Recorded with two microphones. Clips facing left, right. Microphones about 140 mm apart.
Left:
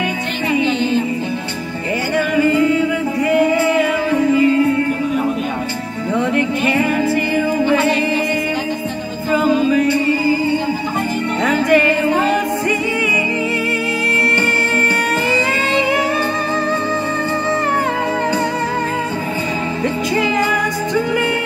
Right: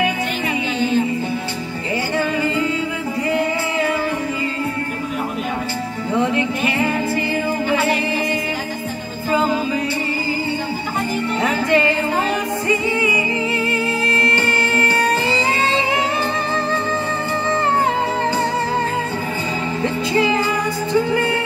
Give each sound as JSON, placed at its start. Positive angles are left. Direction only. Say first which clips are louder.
{"t": 11.4, "sound": "music", "louder": "left 4 dB", "side_deg": -25}